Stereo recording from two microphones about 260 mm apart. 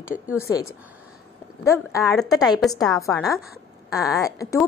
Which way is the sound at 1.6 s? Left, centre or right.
Centre.